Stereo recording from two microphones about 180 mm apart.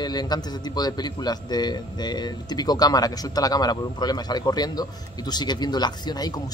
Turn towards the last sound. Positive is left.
turn(degrees=20)  # may be behind; listen again after turning